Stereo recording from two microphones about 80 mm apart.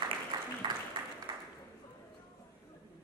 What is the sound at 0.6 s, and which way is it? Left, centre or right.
Applause, right.